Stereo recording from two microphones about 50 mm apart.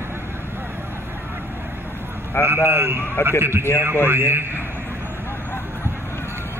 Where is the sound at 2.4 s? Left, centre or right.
Right.